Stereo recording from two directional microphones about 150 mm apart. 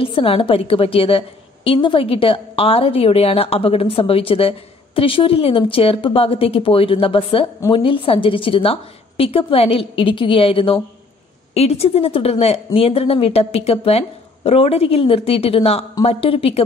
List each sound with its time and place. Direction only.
0.0 s a woman's voice: 35° left (ahead or behind)